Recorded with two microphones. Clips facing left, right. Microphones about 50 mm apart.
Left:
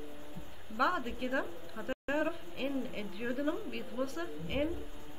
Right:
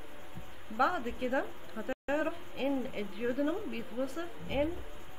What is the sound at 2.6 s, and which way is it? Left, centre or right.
Speech, right.